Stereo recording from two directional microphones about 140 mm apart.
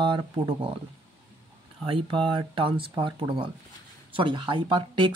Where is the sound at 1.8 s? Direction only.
35° right (ahead or behind).